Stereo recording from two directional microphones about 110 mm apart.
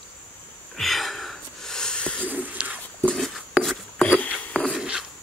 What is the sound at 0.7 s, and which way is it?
Wheeze, centre (ahead or behind).